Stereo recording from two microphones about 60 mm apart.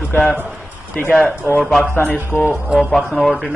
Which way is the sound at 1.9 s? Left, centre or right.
Left.